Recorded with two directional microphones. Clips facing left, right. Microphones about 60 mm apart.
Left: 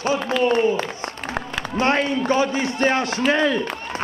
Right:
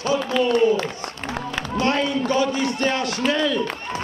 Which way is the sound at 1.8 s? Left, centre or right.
Left.